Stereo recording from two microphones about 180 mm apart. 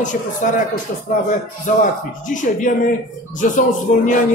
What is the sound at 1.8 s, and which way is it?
Speech, 45° left (ahead or behind).